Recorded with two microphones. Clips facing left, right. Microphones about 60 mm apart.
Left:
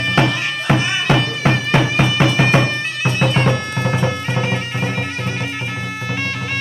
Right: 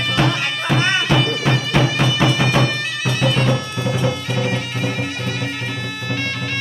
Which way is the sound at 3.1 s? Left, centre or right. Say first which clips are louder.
Left 2 dB; left.